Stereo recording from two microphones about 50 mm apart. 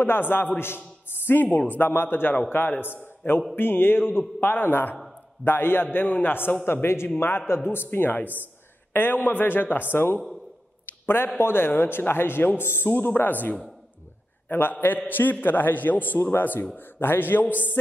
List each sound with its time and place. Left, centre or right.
0.0 s a man's voice: left
16.2 s a man's voice: left